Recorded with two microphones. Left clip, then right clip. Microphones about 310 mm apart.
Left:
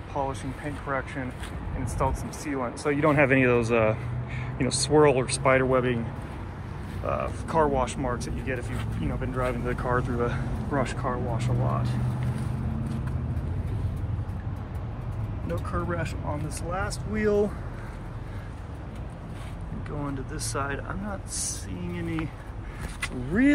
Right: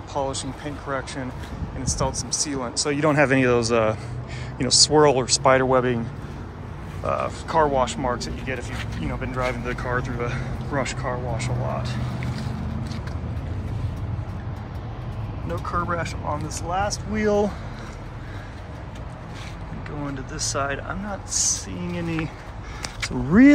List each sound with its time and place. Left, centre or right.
0.1 s speech: centre
4.6 s speech: right
4.9 s speech: centre
7.1 s speech: centre
15.7 s speech: centre
20.3 s speech: centre